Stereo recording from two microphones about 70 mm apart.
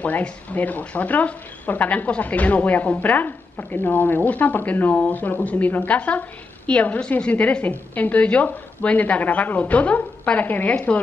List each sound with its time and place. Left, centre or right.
0.0 s speech: left